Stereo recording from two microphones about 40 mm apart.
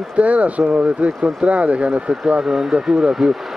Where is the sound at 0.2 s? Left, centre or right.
Right.